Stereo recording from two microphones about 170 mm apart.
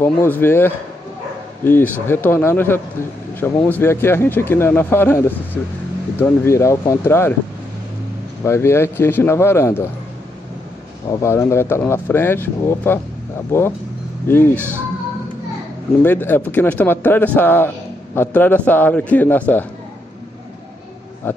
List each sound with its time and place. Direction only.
0.0 s speech: 15° left (ahead or behind)
8.5 s speech: 15° left (ahead or behind)
11.2 s speech: 15° left (ahead or behind)
16.0 s speech: 10° left (ahead or behind)
21.2 s a sound: 10° left (ahead or behind)